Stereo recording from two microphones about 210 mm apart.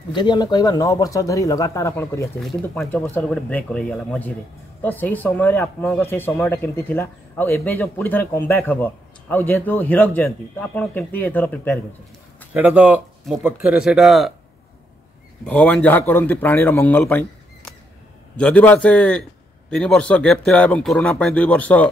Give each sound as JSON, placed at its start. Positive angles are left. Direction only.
{"t": 0.1, "sound": "speech", "side_deg": 20}
{"t": 2.4, "sound": "speech", "side_deg": 5}
{"t": 12.5, "sound": "speech", "side_deg": -5}
{"t": 15.4, "sound": "speech", "side_deg": 5}